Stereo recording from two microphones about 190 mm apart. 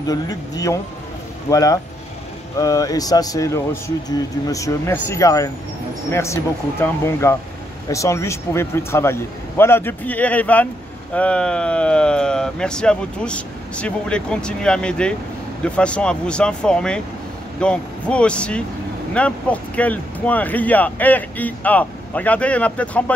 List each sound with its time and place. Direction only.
0.0 s speech: 20° left (ahead or behind)